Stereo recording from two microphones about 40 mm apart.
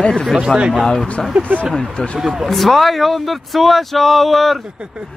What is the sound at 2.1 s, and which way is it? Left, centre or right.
Speech, centre.